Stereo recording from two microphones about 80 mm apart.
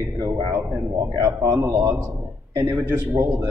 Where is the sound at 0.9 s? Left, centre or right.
Right.